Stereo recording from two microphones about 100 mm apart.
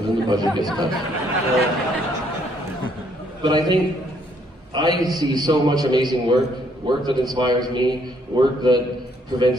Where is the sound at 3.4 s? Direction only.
50° right (ahead or behind).